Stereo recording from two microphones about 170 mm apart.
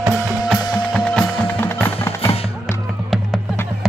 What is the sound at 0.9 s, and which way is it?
Music, 5° left (ahead or behind).